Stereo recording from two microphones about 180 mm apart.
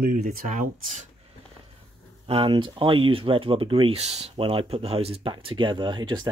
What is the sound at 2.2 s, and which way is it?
Speech, 30° right (ahead or behind).